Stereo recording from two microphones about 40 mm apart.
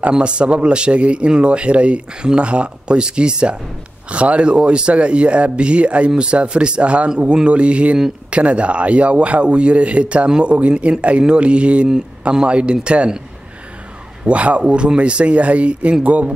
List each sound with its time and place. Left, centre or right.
0.1 s a man's voice: right
14.2 s speech: right